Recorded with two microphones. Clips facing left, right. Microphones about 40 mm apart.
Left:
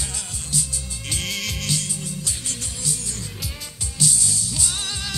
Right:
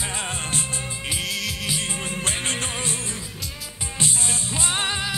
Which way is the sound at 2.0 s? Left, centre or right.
Right.